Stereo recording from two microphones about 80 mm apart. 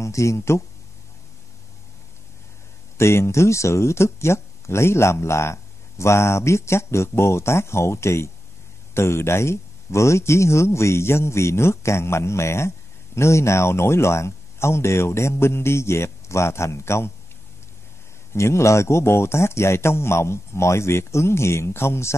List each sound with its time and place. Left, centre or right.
0.0 s speech: left
3.0 s speech: left
18.3 s speech: left